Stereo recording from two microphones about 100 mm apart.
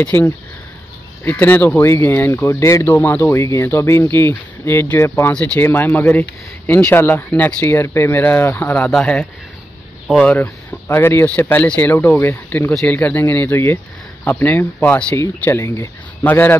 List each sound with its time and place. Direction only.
0.0 s speech: 15° left (ahead or behind)
3.3 s speech: 30° left (ahead or behind)
5.3 s speech: 15° left (ahead or behind)
8.8 s speech: 5° left (ahead or behind)
15.1 s speech: 25° left (ahead or behind)